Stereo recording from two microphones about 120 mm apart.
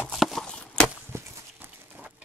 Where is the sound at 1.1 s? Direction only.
20° right (ahead or behind).